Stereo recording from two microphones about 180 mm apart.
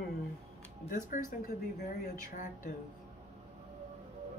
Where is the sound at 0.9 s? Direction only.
50° left (ahead or behind).